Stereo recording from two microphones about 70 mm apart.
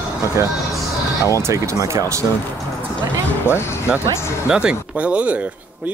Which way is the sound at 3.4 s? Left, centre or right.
Left.